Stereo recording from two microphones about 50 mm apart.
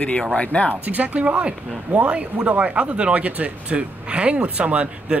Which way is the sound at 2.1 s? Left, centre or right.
Right.